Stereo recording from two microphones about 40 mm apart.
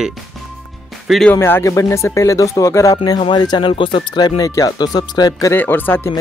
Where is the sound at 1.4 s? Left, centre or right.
Left.